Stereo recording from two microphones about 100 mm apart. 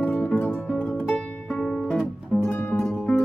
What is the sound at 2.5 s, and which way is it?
Music, 15° left (ahead or behind).